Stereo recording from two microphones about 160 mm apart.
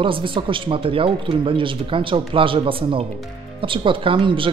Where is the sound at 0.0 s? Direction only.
30° right (ahead or behind).